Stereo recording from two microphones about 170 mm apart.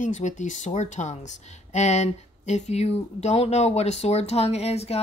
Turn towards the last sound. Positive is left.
turn(degrees=40)  # may be behind; listen again after turning